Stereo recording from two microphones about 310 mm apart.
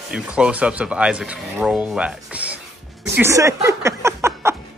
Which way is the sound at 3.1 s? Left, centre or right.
Centre.